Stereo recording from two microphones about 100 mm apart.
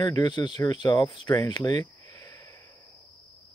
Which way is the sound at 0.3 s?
45° left (ahead or behind).